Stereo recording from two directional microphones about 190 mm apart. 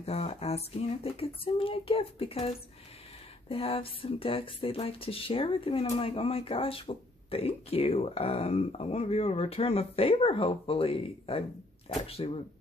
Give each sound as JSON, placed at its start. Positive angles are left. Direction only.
{"t": 0.0, "sound": "speech", "side_deg": 30}